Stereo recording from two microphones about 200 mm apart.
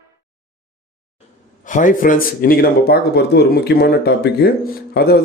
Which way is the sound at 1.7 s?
40° left (ahead or behind).